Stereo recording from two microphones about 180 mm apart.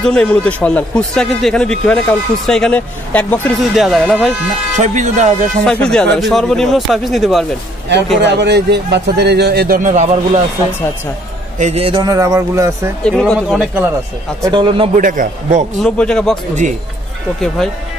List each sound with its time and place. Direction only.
0.0 s a man's voice: 5° left (ahead or behind)
4.7 s speech: 40° right (ahead or behind)
5.7 s a man's voice: 5° left (ahead or behind)
8.2 s a man's voice: 70° right (ahead or behind)
9.8 s a man's voice: 40° right (ahead or behind)
11.5 s a man's voice: 40° right (ahead or behind); by 12.9 s 15° right (ahead or behind)
13.0 s a man's voice: centre (ahead or behind)
14.4 s a man's voice: 25° right (ahead or behind)
15.0 s speech: 45° right (ahead or behind)
15.8 s a man's voice: 5° left (ahead or behind)
17.6 s a man's voice: centre (ahead or behind)